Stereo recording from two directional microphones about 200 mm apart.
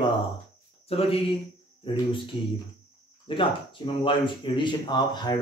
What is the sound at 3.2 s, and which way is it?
Speech, 25° left (ahead or behind).